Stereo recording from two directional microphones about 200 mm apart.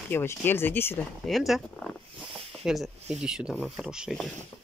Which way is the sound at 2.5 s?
Centre (ahead or behind).